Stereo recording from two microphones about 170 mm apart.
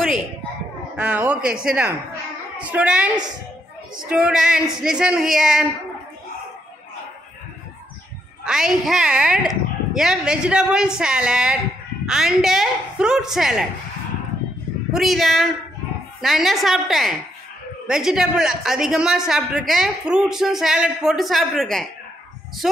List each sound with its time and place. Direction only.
0.9 s a woman's voice: 10° right (ahead or behind)
8.5 s a woman's voice: 5° right (ahead or behind)
14.9 s a woman's voice: centre (ahead or behind)